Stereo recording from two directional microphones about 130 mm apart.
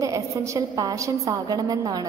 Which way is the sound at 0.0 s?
25° right (ahead or behind).